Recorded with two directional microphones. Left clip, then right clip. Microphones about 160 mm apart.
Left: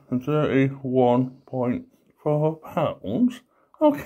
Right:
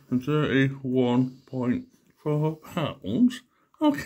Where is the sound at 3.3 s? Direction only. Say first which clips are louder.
Right 2 dB; 15° right (ahead or behind).